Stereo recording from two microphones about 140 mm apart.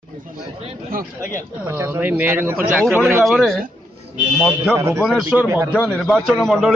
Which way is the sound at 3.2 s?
Centre (ahead or behind).